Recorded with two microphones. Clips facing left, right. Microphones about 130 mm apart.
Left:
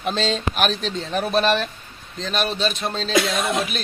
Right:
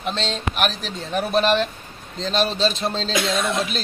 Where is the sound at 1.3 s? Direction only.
20° right (ahead or behind).